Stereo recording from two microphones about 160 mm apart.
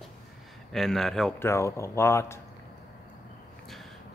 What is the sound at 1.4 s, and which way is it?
Speech, 15° left (ahead or behind).